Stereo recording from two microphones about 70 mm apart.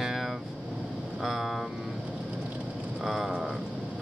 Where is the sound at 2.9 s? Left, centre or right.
Centre.